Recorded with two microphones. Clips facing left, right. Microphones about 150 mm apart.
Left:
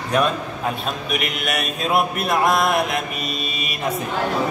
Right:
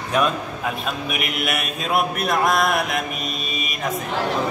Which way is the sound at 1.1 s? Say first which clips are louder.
Left 2 dB; 5° right (ahead or behind).